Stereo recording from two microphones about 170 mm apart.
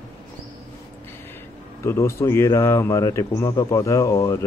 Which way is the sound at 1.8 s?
15° left (ahead or behind).